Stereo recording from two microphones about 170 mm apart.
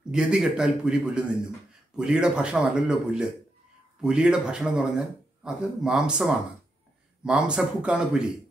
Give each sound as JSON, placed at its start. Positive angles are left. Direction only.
{"t": 0.1, "sound": "speech", "side_deg": -5}